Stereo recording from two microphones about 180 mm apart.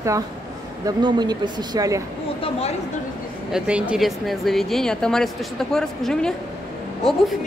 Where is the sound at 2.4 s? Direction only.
35° left (ahead or behind).